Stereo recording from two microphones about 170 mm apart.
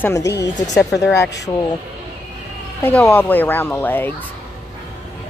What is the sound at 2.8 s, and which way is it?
Speech, 10° left (ahead or behind).